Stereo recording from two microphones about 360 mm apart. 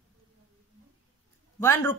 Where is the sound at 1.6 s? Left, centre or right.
Centre.